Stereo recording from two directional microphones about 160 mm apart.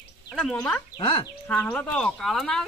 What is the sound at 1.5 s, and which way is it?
Speech, 10° left (ahead or behind).